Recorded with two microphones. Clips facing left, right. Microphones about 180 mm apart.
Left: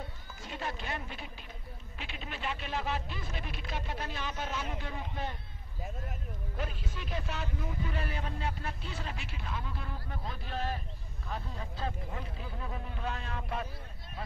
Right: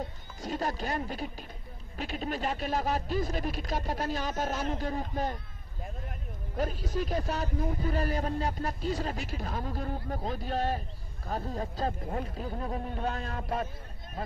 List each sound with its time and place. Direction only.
0.4 s speech: 40° right (ahead or behind)
6.5 s speech: 40° right (ahead or behind)